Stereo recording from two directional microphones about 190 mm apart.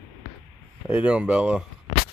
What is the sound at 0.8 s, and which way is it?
Speech, 5° right (ahead or behind).